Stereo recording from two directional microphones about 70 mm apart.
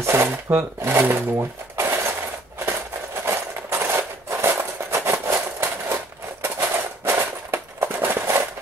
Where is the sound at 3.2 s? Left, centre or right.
Right.